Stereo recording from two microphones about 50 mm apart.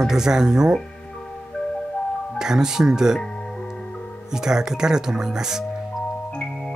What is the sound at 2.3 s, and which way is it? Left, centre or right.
Speech, centre.